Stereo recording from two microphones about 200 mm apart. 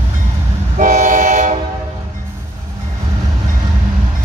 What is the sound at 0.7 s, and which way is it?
Train, 35° right (ahead or behind).